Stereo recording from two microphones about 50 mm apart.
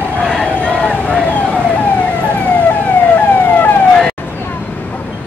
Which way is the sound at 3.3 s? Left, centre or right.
Left.